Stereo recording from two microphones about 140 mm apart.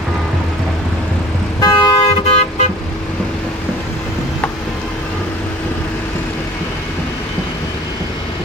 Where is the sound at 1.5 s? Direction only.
25° left (ahead or behind).